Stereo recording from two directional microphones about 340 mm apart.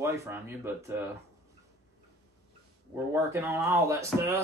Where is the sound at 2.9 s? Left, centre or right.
Centre.